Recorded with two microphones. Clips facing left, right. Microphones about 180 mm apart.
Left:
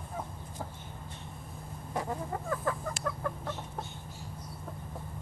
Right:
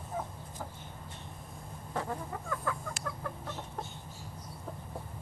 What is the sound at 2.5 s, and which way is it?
Chicken, 40° left (ahead or behind).